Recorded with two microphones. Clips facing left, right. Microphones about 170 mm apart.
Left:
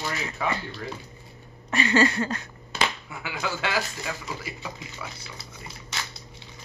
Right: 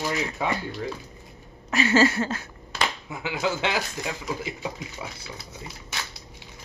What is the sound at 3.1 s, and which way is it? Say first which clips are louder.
Speech: right 4 dB; 20° right (ahead or behind).